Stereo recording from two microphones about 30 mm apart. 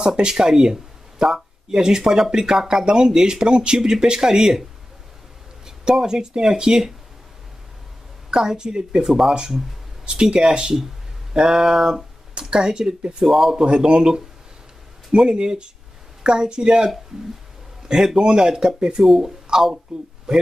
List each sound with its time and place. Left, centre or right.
0.0 s speech: right
2.8 s speech: right
5.9 s speech: right
8.3 s speech: right
12.4 s speech: right
13.2 s speech: centre
13.7 s speech: right
15.2 s speech: right